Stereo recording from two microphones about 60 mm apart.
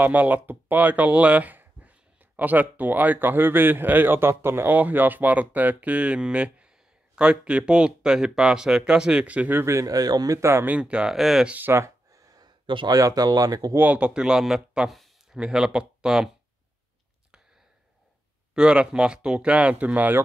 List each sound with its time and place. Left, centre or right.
0.0 s speech: right
4.7 s speech: right
9.6 s speech: right
9.8 s speech: right
10.8 s speech: centre
11.1 s speech: centre
11.4 s speech: right
12.1 s a sound: right
12.9 s speech: right
13.7 s speech: right
14.9 s a sound: centre
15.3 s speech: centre
18.5 s speech: centre